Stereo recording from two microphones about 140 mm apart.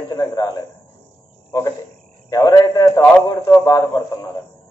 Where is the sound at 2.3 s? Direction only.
25° left (ahead or behind).